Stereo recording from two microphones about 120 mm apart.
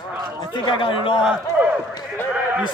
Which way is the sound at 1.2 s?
10° right (ahead or behind).